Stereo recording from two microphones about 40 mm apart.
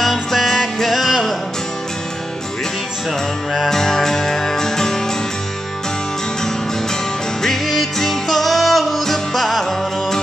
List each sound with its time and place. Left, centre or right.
0.0 s music: centre
3.5 s music: centre
7.4 s music: centre